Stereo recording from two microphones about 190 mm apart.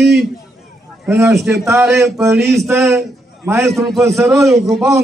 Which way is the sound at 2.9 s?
15° right (ahead or behind).